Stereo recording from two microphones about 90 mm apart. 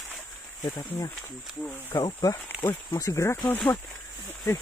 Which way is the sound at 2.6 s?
30° left (ahead or behind).